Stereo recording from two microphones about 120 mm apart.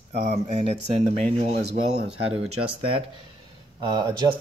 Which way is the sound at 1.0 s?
70° right (ahead or behind).